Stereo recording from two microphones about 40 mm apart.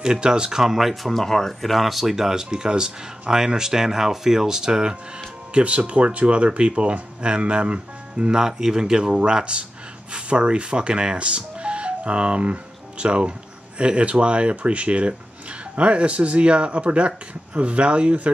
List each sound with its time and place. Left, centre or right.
0.0 s speech: right
1.0 s speech: centre
5.5 s speech: right